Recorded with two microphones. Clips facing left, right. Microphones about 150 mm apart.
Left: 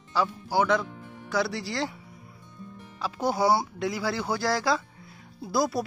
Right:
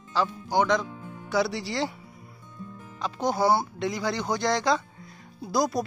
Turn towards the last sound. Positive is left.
turn(degrees=0)  # may be behind; listen again after turning